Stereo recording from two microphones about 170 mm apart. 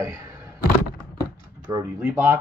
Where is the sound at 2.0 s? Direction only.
10° right (ahead or behind).